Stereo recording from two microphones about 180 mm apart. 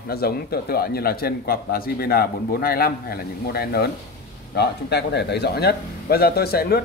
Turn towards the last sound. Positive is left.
turn(degrees=60)  # may be behind; listen again after turning